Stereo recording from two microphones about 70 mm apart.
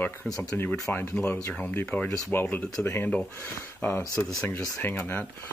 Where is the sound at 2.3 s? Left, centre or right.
Left.